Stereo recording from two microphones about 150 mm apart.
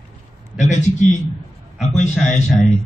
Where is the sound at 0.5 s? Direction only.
50° left (ahead or behind).